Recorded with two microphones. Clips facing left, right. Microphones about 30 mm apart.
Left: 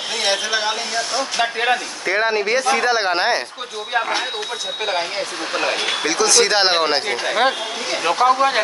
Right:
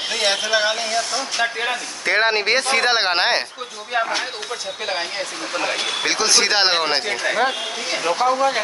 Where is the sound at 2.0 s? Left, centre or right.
Right.